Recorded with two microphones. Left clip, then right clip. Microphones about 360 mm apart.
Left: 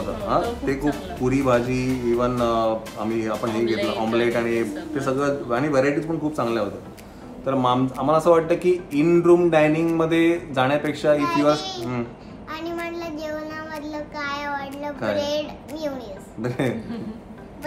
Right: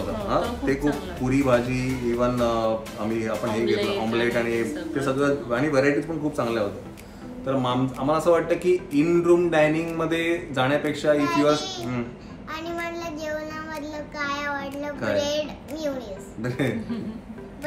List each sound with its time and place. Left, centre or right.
0.6 s speech: centre
12.5 s child singing: centre
16.3 s a woman's voice: centre